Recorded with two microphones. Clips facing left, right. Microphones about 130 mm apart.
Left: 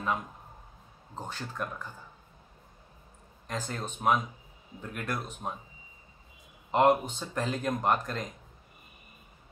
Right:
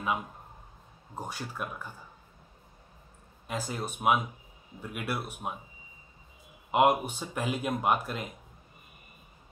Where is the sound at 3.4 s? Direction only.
10° right (ahead or behind).